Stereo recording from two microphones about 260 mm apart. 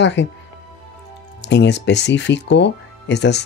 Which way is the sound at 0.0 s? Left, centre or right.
Left.